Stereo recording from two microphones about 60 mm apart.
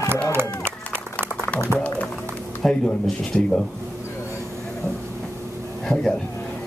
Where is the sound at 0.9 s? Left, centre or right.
Left.